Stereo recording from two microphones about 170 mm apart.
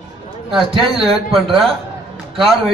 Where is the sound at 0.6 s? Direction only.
35° right (ahead or behind).